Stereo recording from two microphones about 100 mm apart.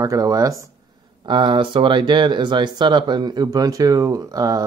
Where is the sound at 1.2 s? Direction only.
55° right (ahead or behind).